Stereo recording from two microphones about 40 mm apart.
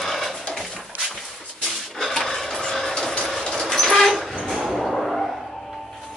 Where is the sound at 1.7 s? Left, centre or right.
Centre.